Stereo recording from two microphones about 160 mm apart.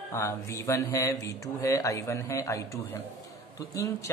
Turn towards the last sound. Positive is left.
turn(degrees=20)  # may be behind; listen again after turning